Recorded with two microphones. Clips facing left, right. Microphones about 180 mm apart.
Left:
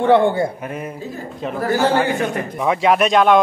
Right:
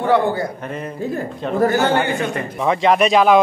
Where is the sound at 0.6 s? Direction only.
10° left (ahead or behind).